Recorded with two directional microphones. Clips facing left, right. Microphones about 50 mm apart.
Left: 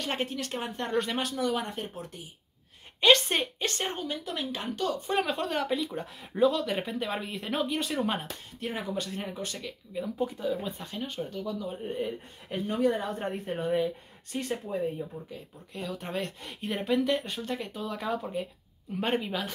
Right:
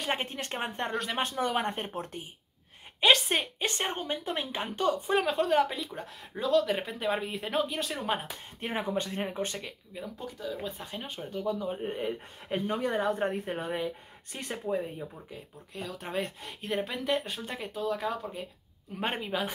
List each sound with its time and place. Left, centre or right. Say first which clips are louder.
0.0 s speech: even; centre
0.3 s speech: left 1 dB; right
3.0 s speech: left 2 dB; centre
3.5 s speech: even; centre
4.0 s speech: right 1 dB; right
5.0 s speech: right 2 dB; centre
8.5 s speech: right 2 dB; right
10.1 s speech: left 9 dB; centre
10.9 s speech: left 3 dB; centre